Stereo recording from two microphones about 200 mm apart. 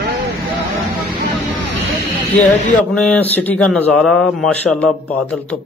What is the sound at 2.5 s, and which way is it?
A man's voice, 5° left (ahead or behind).